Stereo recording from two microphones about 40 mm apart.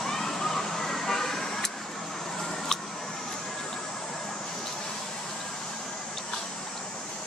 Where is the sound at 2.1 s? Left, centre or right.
Centre.